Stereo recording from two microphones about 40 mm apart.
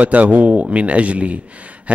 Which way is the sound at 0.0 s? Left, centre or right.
Right.